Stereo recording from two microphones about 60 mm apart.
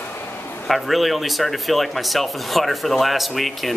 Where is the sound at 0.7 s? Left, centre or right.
Centre.